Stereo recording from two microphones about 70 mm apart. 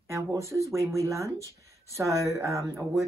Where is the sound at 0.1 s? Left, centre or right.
Right.